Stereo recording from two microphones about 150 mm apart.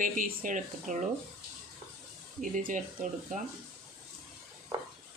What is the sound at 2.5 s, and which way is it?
Speech, 60° right (ahead or behind).